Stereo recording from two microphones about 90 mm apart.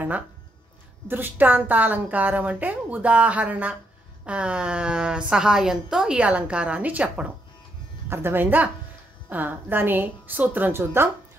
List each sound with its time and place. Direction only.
1.0 s a woman's voice: 25° right (ahead or behind)